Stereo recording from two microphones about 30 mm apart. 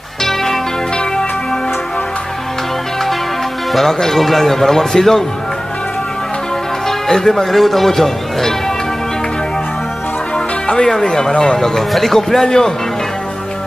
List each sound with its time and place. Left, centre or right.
0.2 s music: centre
3.7 s speech: centre
6.9 s speech: centre
7.5 s speech: centre
11.1 s speech: left
11.6 s speech: centre
12.4 s speech: left